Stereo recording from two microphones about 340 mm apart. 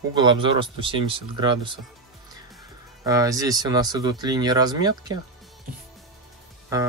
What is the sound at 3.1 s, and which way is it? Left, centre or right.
Speech, centre.